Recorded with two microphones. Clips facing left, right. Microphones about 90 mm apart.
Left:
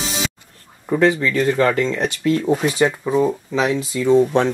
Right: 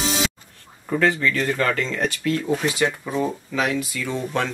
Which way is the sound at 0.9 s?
20° left (ahead or behind).